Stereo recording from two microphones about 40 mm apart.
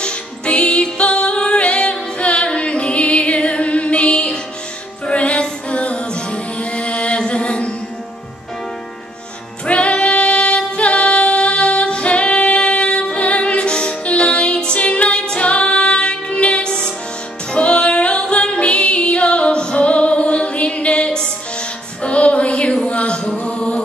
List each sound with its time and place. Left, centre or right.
0.0 s music: left
9.7 s female singing: left
16.6 s music: left
22.8 s a sound: left
23.4 s music: left